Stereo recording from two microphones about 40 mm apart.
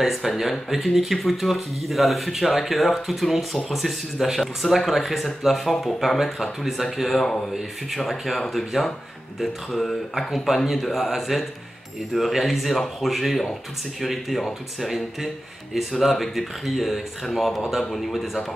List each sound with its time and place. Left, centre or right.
0.0 s speech: centre